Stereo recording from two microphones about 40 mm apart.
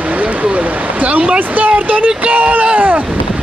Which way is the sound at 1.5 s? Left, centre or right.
Right.